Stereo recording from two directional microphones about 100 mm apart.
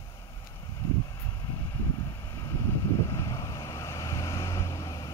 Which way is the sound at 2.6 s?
30° left (ahead or behind).